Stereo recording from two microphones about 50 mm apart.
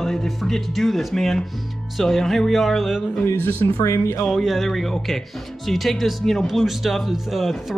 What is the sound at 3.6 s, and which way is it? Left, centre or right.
Speech, left.